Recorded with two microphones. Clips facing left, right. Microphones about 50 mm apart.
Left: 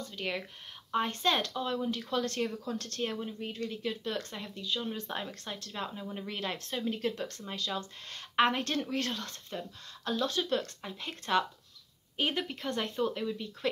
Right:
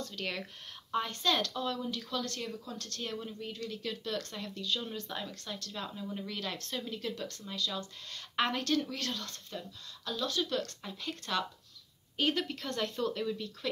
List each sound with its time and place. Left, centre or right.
0.0 s speech: centre
0.9 s a woman's voice: left
4.9 s a woman's voice: left
5.7 s a woman's voice: left